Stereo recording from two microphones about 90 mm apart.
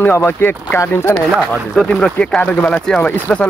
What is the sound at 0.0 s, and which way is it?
Speech, 25° left (ahead or behind).